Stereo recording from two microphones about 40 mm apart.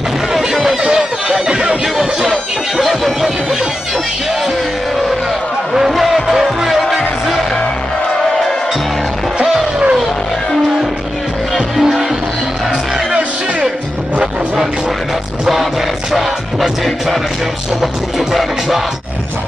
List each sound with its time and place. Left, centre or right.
0.3 s music: centre
0.9 s a sound: centre
2.9 s a sound: centre
5.8 s music: centre
11.5 s music: centre
16.1 s music: centre